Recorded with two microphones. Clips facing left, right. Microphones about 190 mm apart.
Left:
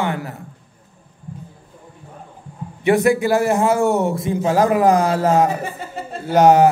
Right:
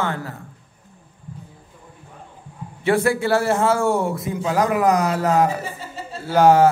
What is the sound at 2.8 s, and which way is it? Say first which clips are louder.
A man's voice: left 3 dB; 15° left (ahead or behind).